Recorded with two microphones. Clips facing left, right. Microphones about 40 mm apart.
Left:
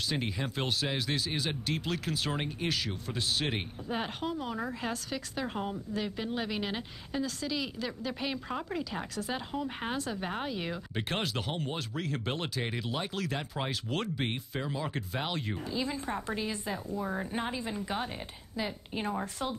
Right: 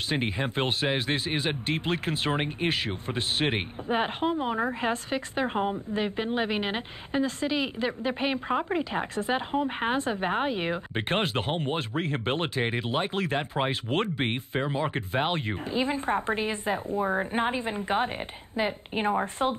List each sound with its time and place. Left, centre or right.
0.1 s speech: right